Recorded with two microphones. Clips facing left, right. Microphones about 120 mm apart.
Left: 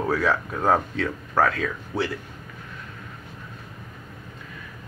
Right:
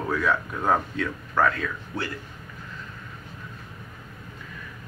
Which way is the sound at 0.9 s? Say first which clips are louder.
Left 2 dB; 85° left.